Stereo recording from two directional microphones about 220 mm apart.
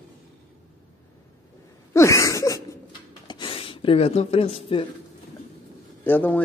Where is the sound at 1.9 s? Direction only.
15° left (ahead or behind).